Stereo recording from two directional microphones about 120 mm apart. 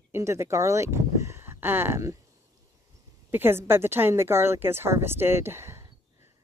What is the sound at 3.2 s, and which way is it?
Speech, 20° right (ahead or behind).